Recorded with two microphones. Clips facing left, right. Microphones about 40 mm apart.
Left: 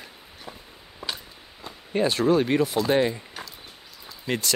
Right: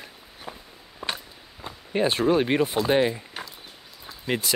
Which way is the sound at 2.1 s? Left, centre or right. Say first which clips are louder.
Left 1 dB; right.